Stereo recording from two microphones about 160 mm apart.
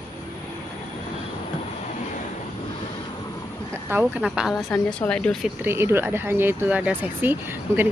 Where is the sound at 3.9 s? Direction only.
10° right (ahead or behind).